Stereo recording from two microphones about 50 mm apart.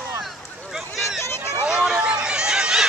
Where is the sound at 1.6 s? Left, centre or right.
Centre.